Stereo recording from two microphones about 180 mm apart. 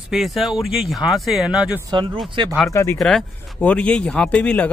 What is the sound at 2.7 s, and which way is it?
Speech, 15° left (ahead or behind).